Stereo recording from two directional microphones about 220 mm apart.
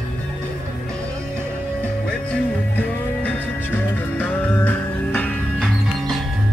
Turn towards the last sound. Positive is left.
turn(degrees=0)  # may be behind; listen again after turning